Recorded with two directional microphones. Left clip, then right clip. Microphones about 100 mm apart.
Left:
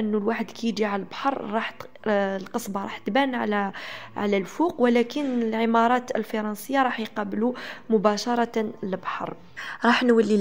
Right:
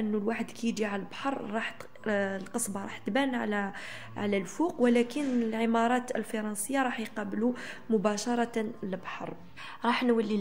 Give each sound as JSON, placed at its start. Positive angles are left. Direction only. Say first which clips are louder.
{"t": 0.1, "sound": "a woman's voice", "louder": "left 6 dB", "side_deg": 35}
{"t": 9.7, "sound": "a woman's voice", "louder": "left 7 dB", "side_deg": 60}